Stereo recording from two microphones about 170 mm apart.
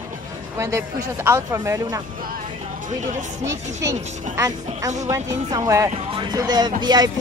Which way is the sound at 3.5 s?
15° right (ahead or behind).